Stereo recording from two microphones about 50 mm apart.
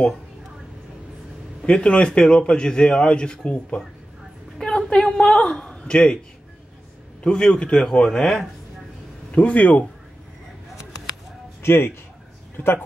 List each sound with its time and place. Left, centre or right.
1.7 s a man's voice: left
7.2 s a man's voice: centre
9.3 s a man's voice: left
11.6 s a man's voice: left
12.5 s a man's voice: left